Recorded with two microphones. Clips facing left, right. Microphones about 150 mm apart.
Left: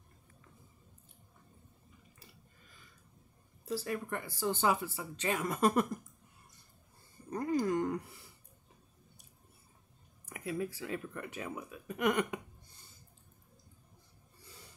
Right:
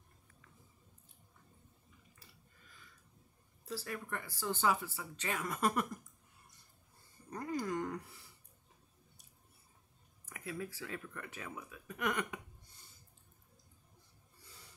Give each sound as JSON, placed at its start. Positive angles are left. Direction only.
{"t": 3.6, "sound": "speech", "side_deg": 20}
{"t": 7.2, "sound": "a sound", "side_deg": 25}
{"t": 10.3, "sound": "speech", "side_deg": 20}